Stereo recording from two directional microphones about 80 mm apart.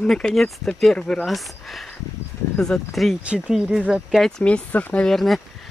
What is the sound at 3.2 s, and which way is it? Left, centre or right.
Speech, centre.